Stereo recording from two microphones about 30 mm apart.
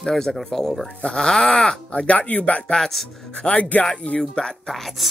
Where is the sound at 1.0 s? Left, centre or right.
Left.